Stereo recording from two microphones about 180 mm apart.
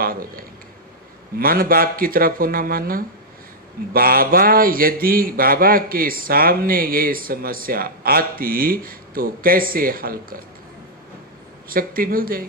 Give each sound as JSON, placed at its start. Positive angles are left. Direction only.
{"t": 0.0, "sound": "speech", "side_deg": -55}
{"t": 11.7, "sound": "speech", "side_deg": -55}